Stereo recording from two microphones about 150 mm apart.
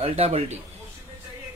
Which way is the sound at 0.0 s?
45° right (ahead or behind).